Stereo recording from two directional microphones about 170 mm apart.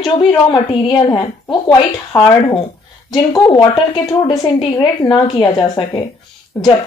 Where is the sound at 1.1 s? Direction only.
25° left (ahead or behind).